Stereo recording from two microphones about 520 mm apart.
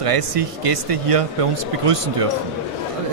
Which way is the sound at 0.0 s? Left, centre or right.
Right.